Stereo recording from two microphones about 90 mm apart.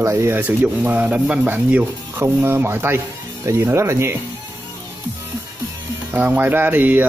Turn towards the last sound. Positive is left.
turn(degrees=-20)  # may be behind; listen again after turning